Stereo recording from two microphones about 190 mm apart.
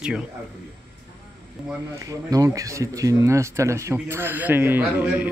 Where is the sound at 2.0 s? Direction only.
20° right (ahead or behind).